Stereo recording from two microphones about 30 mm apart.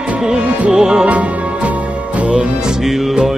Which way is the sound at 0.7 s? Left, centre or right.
Right.